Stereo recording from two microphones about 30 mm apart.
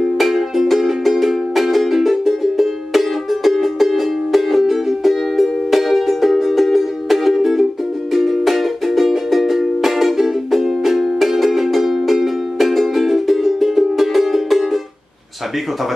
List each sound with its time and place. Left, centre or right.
0.0 s music: centre